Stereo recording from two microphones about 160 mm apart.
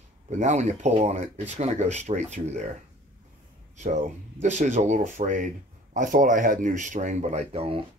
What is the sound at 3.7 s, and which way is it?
Speech, 50° right (ahead or behind).